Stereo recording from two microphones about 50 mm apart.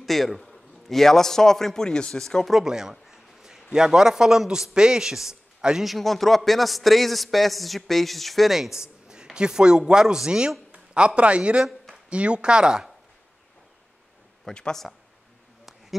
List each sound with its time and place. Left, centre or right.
0.0 s a man's voice: centre
2.5 s a sound: centre
3.7 s a man's voice: centre
5.9 s a man's voice: centre
14.5 s a man's voice: centre